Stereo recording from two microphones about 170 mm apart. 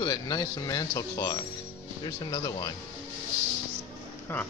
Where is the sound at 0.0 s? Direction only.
25° left (ahead or behind).